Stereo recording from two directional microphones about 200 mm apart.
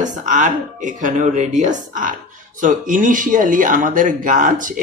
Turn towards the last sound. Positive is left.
turn(degrees=-40)  # may be behind; listen again after turning